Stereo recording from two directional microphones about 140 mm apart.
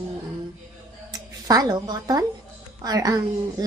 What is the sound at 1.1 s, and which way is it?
A woman's voice, 25° right (ahead or behind).